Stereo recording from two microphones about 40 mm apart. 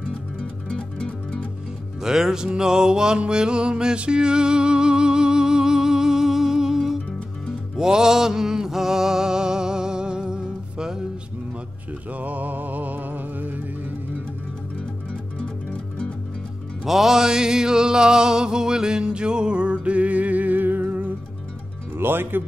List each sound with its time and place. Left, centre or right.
0.7 s music: left
2.0 s music: centre
12.1 s music: right
15.4 s music: left
16.8 s music: centre; by 21.1 s right
21.9 s speech: right